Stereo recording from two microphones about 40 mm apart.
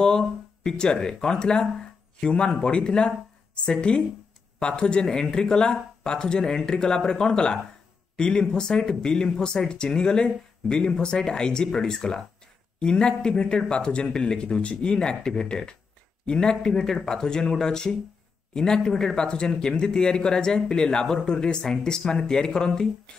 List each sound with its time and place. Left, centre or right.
0.7 s speech: centre